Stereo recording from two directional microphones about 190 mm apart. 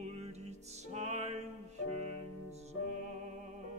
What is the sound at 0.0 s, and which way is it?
Music, 35° right (ahead or behind).